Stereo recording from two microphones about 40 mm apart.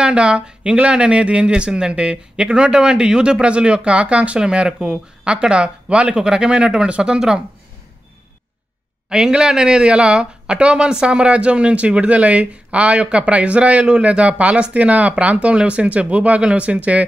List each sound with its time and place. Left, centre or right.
0.0 s speech: right
9.1 s speech: centre; by 17.0 s right